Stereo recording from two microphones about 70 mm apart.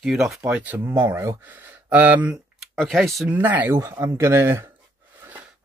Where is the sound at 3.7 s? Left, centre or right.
Right.